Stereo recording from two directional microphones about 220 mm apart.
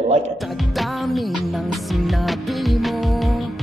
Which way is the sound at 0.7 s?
Centre (ahead or behind).